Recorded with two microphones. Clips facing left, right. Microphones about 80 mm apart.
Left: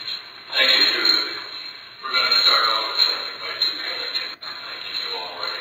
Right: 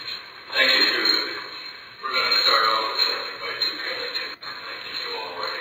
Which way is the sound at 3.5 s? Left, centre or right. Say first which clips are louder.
Right 1 dB; left.